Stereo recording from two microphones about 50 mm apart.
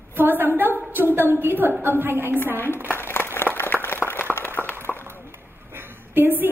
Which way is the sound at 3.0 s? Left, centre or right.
Left.